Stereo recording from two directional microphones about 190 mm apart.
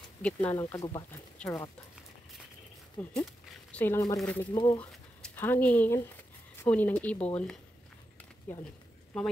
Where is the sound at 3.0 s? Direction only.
10° left (ahead or behind).